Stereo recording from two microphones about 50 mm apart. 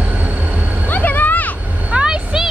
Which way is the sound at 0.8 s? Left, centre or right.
Left.